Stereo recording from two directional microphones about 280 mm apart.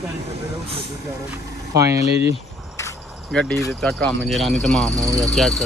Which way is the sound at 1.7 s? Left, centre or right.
Centre.